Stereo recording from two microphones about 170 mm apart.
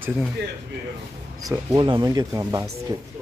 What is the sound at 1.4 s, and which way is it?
Speech, 25° right (ahead or behind).